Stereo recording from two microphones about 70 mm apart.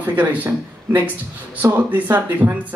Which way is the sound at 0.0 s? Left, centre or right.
Right.